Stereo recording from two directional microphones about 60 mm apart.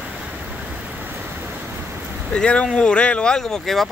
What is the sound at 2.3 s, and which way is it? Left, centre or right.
Speech, centre.